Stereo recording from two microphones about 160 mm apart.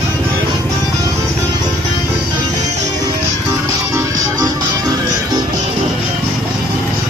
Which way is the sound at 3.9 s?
20° right (ahead or behind).